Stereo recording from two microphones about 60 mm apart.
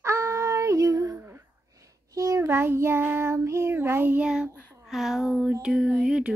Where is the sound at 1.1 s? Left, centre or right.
Right.